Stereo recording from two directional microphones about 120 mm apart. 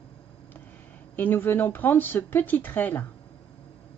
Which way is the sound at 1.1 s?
15° left (ahead or behind).